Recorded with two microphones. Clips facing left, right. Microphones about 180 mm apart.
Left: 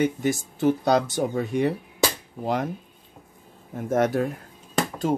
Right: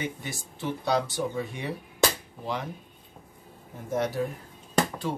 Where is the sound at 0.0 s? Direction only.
45° left (ahead or behind).